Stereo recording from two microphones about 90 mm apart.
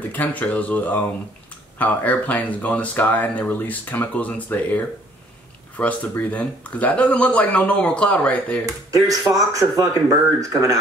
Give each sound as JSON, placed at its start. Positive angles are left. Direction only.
{"t": 0.1, "sound": "speech", "side_deg": 15}
{"t": 8.9, "sound": "speech", "side_deg": -40}